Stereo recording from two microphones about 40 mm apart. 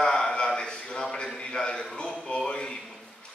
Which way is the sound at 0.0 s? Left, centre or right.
Left.